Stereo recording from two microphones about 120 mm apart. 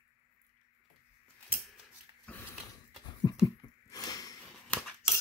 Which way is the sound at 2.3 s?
10° left (ahead or behind).